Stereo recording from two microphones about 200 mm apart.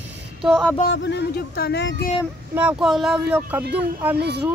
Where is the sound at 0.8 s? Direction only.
65° left (ahead or behind).